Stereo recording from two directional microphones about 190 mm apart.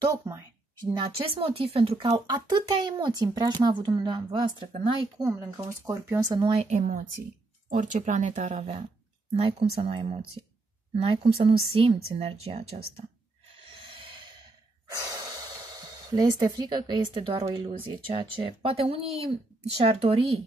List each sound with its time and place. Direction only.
0.0 s speech: 15° right (ahead or behind)
0.8 s speech: 30° right (ahead or behind)
5.7 s speech: 15° right (ahead or behind); by 13.0 s 30° right (ahead or behind)
13.7 s music: 25° right (ahead or behind)
15.0 s speech: 20° right (ahead or behind)